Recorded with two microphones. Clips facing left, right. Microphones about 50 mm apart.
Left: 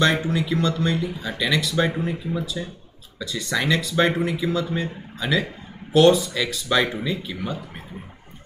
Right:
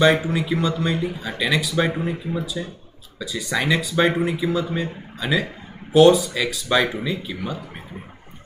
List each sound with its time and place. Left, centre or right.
0.0 s speech: centre